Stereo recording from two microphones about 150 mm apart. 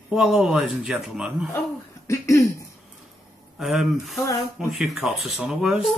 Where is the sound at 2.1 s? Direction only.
20° left (ahead or behind).